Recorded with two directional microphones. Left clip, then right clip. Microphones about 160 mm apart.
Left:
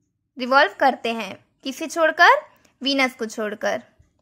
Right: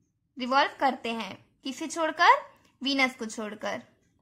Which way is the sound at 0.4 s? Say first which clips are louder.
Left 8 dB; 35° left (ahead or behind).